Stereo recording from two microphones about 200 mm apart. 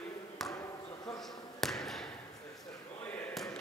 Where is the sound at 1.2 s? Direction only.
Centre (ahead or behind).